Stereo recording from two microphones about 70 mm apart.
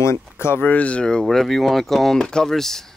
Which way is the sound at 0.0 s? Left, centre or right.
Left.